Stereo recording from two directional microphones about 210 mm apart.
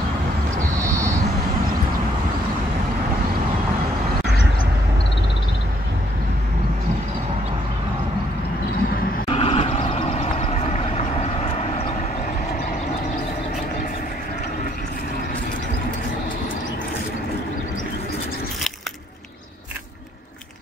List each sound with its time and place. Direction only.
9.3 s vehicle: 25° left (ahead or behind)